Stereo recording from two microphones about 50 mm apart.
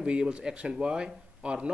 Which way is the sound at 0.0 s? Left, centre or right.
Right.